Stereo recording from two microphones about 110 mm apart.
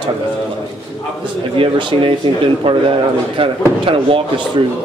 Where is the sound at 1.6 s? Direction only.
50° right (ahead or behind).